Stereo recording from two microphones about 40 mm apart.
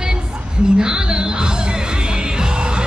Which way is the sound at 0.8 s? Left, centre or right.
Right.